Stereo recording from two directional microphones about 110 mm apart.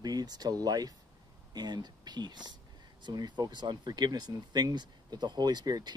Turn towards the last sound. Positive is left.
turn(degrees=-40)  # may be behind; listen again after turning